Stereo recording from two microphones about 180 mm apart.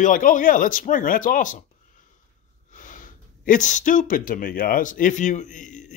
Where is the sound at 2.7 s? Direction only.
45° left (ahead or behind).